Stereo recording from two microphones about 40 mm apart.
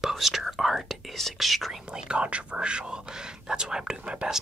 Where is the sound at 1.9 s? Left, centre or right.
Right.